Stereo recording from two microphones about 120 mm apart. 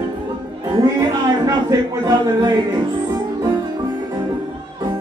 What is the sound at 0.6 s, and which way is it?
Music, 35° right (ahead or behind).